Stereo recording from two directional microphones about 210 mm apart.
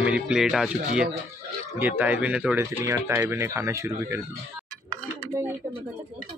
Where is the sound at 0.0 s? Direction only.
5° right (ahead or behind).